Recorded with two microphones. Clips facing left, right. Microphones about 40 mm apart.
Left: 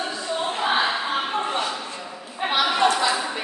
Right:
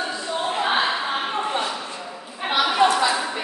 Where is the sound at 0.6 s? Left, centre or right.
Centre.